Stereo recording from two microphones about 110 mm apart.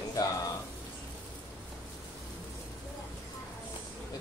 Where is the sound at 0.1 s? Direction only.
35° left (ahead or behind).